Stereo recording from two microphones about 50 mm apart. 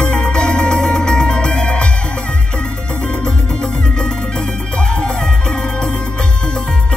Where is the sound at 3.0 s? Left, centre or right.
Centre.